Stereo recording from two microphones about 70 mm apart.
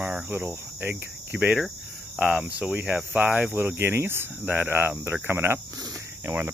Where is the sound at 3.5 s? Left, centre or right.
Right.